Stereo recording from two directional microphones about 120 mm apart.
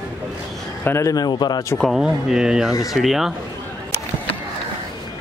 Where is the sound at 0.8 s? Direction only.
20° left (ahead or behind).